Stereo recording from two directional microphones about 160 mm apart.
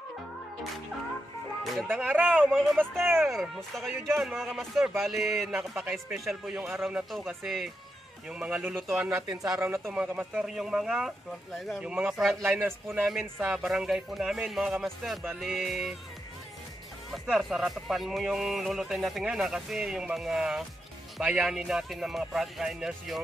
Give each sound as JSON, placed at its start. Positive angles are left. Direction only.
{"t": 1.9, "sound": "speech", "side_deg": -10}
{"t": 2.4, "sound": "speech", "side_deg": 0}
{"t": 5.8, "sound": "speech", "side_deg": -15}
{"t": 6.1, "sound": "speech", "side_deg": 0}
{"t": 9.3, "sound": "speech", "side_deg": -20}
{"t": 12.4, "sound": "speech", "side_deg": -15}
{"t": 13.0, "sound": "speech", "side_deg": 0}
{"t": 17.1, "sound": "speech", "side_deg": 0}